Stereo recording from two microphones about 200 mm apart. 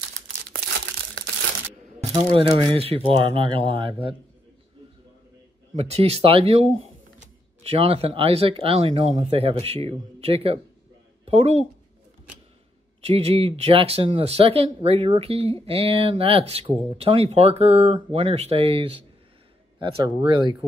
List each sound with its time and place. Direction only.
0.7 s crumpling: 70° right (ahead or behind)
2.3 s speech: 30° right (ahead or behind)
5.8 s speech: 30° right (ahead or behind)
13.0 s speech: 30° right (ahead or behind)